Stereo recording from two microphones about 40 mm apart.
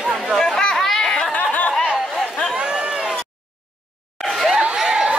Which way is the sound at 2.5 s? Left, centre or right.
Right.